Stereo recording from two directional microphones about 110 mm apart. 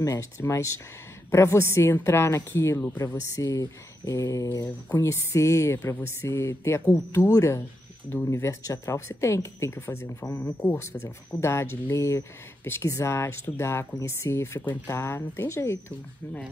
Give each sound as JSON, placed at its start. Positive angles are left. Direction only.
{"t": 0.0, "sound": "speech", "side_deg": 30}
{"t": 10.2, "sound": "speech", "side_deg": 10}